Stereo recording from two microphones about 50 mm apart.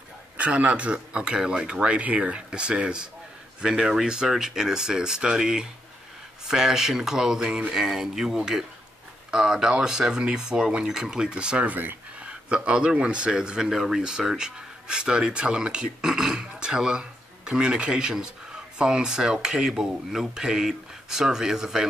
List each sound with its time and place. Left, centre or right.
0.4 s speech: right
11.6 s speech: right
12.3 s speech: right